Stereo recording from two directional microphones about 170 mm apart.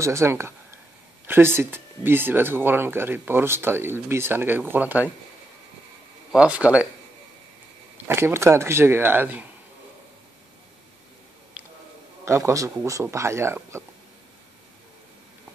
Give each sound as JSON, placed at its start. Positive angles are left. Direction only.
{"t": 0.0, "sound": "speech", "side_deg": -15}
{"t": 6.3, "sound": "speech", "side_deg": -5}
{"t": 8.1, "sound": "speech", "side_deg": -15}
{"t": 12.3, "sound": "speech", "side_deg": -15}